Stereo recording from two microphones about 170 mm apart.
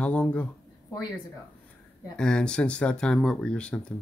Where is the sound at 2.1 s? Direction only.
5° left (ahead or behind).